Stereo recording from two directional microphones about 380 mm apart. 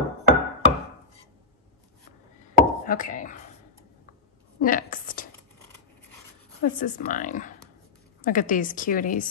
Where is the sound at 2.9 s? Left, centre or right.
Left.